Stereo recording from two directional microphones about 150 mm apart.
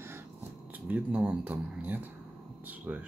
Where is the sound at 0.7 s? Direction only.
10° right (ahead or behind).